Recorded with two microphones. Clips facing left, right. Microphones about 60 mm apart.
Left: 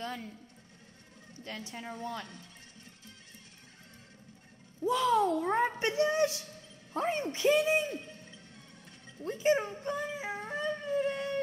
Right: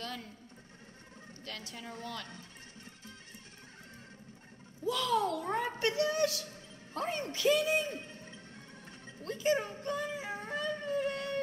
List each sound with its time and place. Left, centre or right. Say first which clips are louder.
1.4 s a woman's voice: left 4 dB; left
4.8 s a woman's voice: left 4 dB; left
7.9 s a sound: left 2 dB; right
9.2 s speech: left 3 dB; left
10.9 s howl: left 3 dB; centre